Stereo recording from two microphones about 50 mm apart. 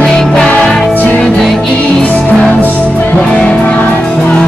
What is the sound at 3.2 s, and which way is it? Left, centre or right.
Music, left.